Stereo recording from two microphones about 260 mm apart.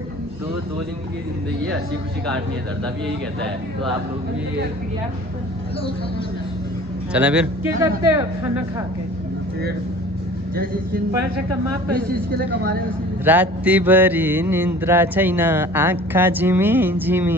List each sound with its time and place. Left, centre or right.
7.1 s speech: centre
8.0 s mantra: centre
10.5 s speech: right
12.1 s speech: right
13.2 s mantra: centre